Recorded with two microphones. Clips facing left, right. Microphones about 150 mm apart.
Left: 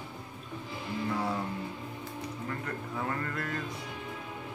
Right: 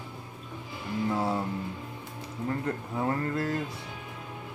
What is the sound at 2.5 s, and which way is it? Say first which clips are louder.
Speech: right 9 dB; 30° right (ahead or behind).